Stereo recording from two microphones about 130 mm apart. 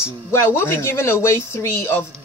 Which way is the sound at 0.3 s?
20° left (ahead or behind).